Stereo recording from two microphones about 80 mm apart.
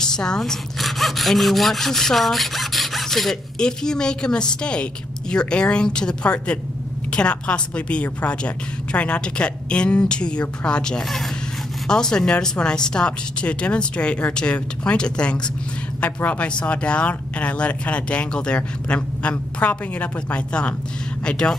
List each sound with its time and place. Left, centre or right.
0.0 s sawing: centre
5.3 s speech: centre